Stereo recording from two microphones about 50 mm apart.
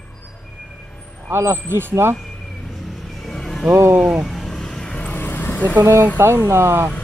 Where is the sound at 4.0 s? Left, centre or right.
Centre.